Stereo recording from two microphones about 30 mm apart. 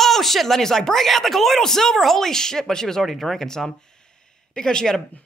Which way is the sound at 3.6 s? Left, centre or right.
Left.